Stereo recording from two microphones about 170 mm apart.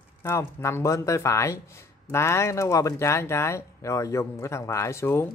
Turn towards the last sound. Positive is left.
turn(degrees=15)  # may be behind; listen again after turning